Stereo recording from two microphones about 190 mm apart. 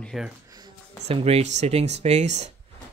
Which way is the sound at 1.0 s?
35° right (ahead or behind).